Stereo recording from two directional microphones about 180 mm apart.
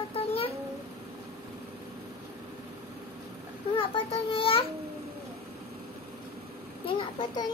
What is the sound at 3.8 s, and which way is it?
Speech, 30° left (ahead or behind).